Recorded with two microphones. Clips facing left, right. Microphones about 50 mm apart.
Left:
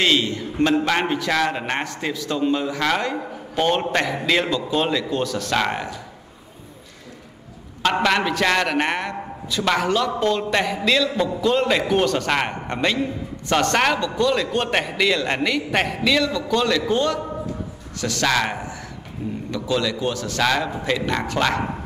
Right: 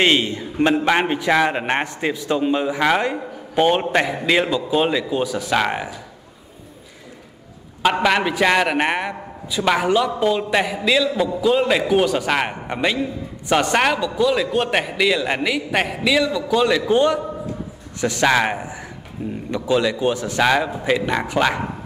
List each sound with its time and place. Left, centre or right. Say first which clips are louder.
0.0 s a man's voice: right 2 dB; right; by 5.9 s centre
7.8 s a man's voice: right 2 dB; centre